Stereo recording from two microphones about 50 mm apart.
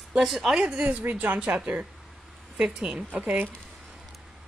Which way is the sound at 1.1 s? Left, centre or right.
Right.